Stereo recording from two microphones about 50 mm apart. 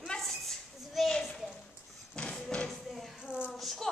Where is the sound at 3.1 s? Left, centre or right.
Right.